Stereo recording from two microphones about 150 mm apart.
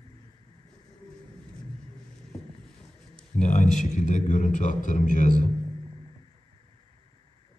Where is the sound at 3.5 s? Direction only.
55° left (ahead or behind).